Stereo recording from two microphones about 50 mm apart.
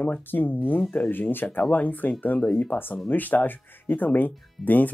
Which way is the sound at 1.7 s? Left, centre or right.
Left.